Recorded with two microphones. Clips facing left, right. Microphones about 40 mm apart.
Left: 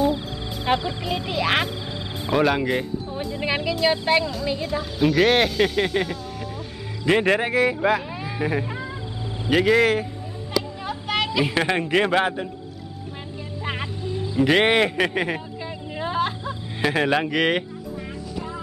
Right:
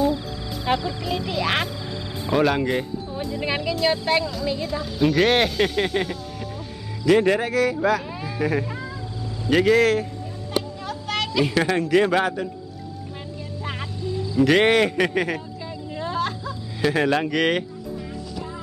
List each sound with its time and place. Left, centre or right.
0.1 s music: left; by 1.7 s centre
1.7 s music: left
2.3 s speech: centre
7.1 s speech: left
8.3 s speech: centre
13.7 s music: left
14.1 s music: left
14.4 s a sound: centre
16.8 s speech: centre